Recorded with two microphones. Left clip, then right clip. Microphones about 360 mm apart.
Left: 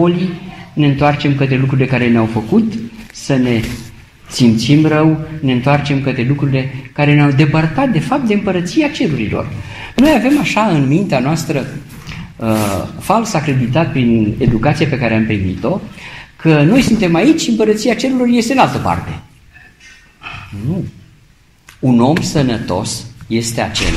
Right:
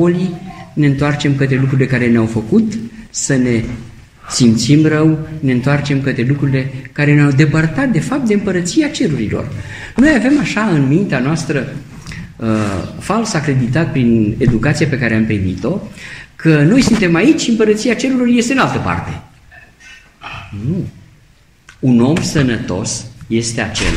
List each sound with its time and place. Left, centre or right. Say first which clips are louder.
0.7 s a man's voice: left 3 dB; centre
21.8 s a man's voice: left 1 dB; centre